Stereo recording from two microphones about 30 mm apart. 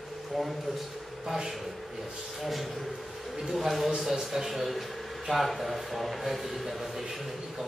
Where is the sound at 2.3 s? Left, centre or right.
Centre.